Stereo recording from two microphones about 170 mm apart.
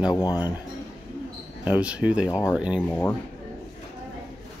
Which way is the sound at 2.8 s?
10° left (ahead or behind).